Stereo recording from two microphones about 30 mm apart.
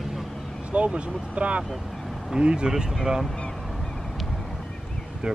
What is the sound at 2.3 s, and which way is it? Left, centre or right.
Speech, right.